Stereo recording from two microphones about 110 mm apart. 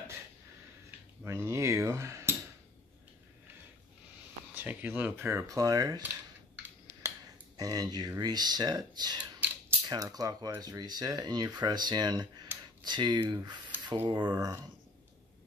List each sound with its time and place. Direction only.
1.2 s speech: 25° right (ahead or behind)
4.6 s speech: 15° right (ahead or behind); by 6.0 s 35° right (ahead or behind)
7.5 s speech: 35° right (ahead or behind)
9.2 s whispering: 15° right (ahead or behind)
9.8 s speech: 35° right (ahead or behind)
12.5 s a sound: 20° right (ahead or behind)
12.8 s speech: 40° right (ahead or behind)